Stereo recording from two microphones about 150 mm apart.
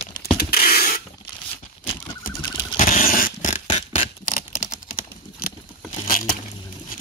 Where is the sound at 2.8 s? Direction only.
65° left (ahead or behind).